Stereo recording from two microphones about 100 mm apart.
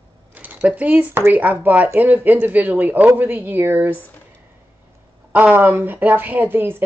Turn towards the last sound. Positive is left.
turn(degrees=-20)  # may be behind; listen again after turning